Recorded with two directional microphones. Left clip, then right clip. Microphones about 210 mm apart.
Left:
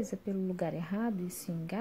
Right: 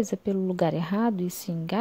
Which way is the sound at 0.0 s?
35° right (ahead or behind).